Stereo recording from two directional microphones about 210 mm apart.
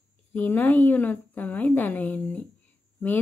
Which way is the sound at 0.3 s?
10° left (ahead or behind).